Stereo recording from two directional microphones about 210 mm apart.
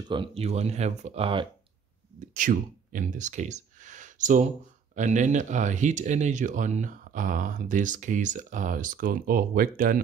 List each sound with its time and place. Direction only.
0.1 s speech: 25° right (ahead or behind)
2.1 s speech: 40° right (ahead or behind)